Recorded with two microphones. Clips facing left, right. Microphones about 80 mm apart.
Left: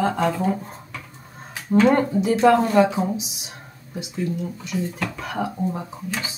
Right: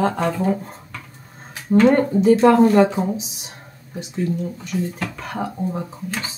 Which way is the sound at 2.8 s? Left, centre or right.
Centre.